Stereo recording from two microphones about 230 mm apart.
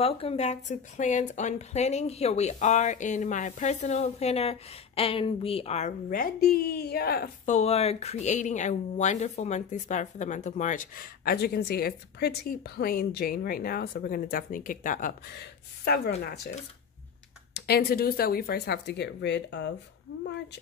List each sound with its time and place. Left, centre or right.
0.0 s speech: left
17.6 s speech: left